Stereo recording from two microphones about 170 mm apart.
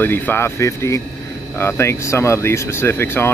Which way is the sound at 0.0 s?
10° left (ahead or behind).